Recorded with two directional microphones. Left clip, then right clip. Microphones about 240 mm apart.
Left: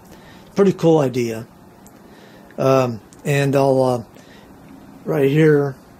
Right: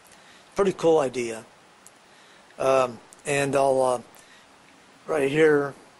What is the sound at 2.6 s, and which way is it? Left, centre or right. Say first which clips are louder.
Speech: left 5 dB; centre.